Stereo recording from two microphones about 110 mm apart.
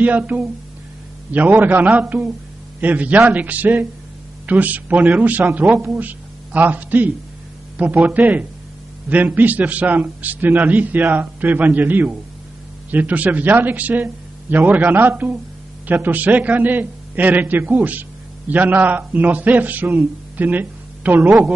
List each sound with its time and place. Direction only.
0.0 s a man's voice: 15° right (ahead or behind)
7.7 s a sound: 15° right (ahead or behind)
8.1 s a man's voice: 15° right (ahead or behind)
21.3 s speech: 5° right (ahead or behind)